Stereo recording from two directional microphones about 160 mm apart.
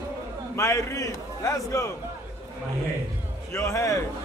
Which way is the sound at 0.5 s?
20° left (ahead or behind).